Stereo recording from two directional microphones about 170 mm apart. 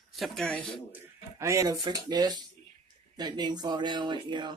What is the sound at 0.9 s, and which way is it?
Speech, 15° right (ahead or behind).